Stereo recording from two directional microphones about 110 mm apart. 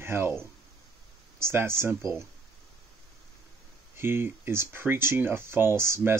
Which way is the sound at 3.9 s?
20° right (ahead or behind).